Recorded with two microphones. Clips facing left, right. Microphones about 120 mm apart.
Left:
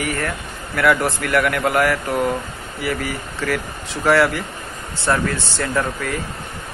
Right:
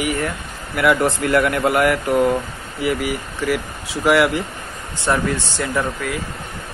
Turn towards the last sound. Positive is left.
turn(degrees=-10)  # may be behind; listen again after turning